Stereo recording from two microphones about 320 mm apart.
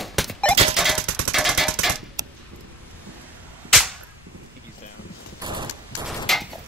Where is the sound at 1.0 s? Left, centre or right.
Right.